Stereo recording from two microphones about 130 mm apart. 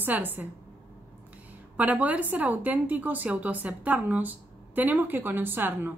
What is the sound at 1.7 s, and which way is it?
A woman's voice, 10° right (ahead or behind).